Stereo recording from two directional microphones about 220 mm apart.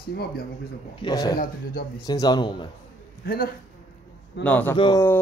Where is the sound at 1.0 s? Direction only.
15° left (ahead or behind).